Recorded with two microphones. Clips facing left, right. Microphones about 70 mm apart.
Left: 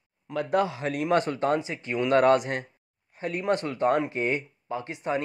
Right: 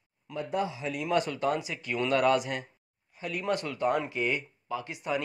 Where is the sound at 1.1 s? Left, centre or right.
Left.